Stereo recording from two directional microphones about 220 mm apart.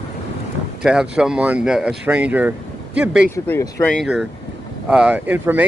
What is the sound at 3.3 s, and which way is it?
Speech, 10° left (ahead or behind).